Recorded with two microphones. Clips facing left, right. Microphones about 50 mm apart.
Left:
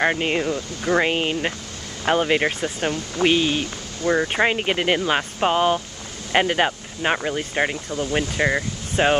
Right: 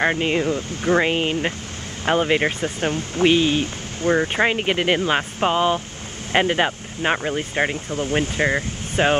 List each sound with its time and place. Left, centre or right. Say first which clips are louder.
0.0 s speech: right 1 dB; centre
0.5 s speech: right 2 dB; right
1.0 s speech: right 1 dB; centre
2.6 s speech: right 1 dB; right
4.4 s speech: right 1 dB; centre
7.7 s speech: right 1 dB; right